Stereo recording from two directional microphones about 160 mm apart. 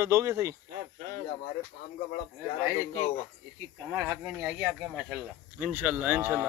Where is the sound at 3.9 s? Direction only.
15° right (ahead or behind).